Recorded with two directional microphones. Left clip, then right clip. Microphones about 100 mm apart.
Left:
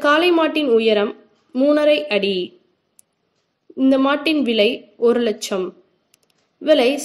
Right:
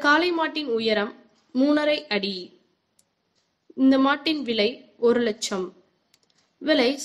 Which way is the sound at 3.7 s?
25° left (ahead or behind).